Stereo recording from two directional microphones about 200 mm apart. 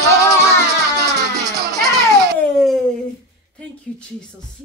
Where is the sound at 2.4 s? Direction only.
Centre (ahead or behind).